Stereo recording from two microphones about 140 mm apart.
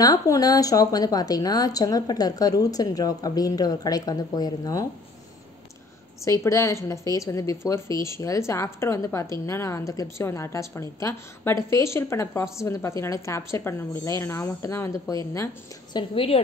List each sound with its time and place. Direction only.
0.0 s a woman's voice: 25° left (ahead or behind)
6.4 s a woman's voice: 20° left (ahead or behind)
16.0 s a woman's voice: 40° left (ahead or behind)